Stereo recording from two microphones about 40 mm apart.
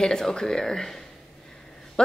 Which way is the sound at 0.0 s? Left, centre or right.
Centre.